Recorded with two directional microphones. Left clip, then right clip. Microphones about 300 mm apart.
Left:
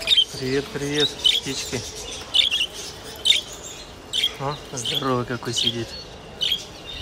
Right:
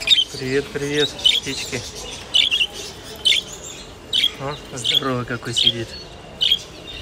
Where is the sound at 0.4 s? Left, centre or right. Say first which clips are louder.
Right 3 dB; centre.